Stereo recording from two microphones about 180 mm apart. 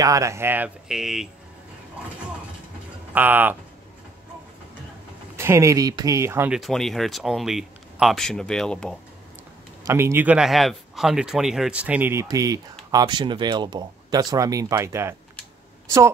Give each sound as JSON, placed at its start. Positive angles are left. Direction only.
{"t": 0.0, "sound": "speech", "side_deg": -15}
{"t": 3.2, "sound": "speech", "side_deg": -10}
{"t": 5.3, "sound": "speech", "side_deg": -15}
{"t": 6.5, "sound": "speech", "side_deg": 0}
{"t": 9.8, "sound": "speech", "side_deg": -15}